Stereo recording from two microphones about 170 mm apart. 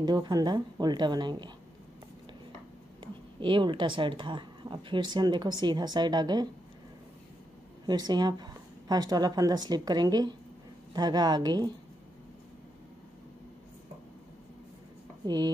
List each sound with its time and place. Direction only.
0.0 s a woman's voice: 25° right (ahead or behind)
3.0 s a woman's voice: 30° right (ahead or behind)
7.8 s a woman's voice: 25° right (ahead or behind)
15.2 s a woman's voice: 25° right (ahead or behind)